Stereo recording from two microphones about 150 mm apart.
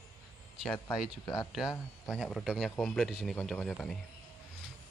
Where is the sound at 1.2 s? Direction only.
25° left (ahead or behind).